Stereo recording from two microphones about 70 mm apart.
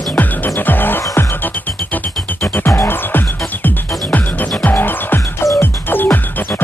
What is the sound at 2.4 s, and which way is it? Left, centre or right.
Music, left.